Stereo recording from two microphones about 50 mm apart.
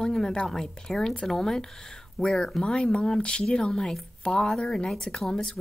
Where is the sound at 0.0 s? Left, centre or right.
Centre.